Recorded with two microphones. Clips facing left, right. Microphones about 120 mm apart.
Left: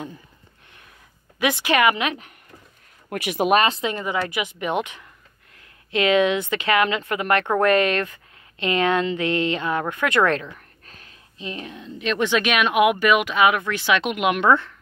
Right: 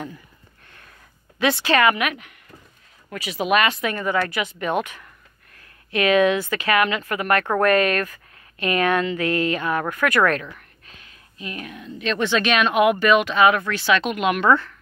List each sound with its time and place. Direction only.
1.4 s speech: 15° left (ahead or behind)
3.1 s speech: 55° left (ahead or behind)
3.5 s a woman's voice: 30° left (ahead or behind)
10.9 s a sound: 40° left (ahead or behind)
11.3 s speech: 25° left (ahead or behind)